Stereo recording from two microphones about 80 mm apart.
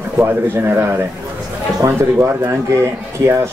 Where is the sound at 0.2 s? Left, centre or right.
Right.